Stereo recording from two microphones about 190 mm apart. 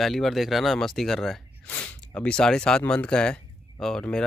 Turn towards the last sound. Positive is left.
turn(degrees=5)  # may be behind; listen again after turning